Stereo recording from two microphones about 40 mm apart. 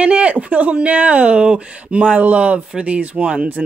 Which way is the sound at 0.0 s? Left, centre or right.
Right.